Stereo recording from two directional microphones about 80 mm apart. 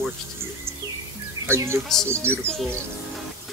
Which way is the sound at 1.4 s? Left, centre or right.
Right.